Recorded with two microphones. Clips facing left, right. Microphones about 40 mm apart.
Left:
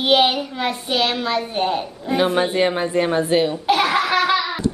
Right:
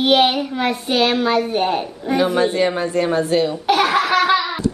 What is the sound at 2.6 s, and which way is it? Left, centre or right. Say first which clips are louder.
A woman's voice: even; left.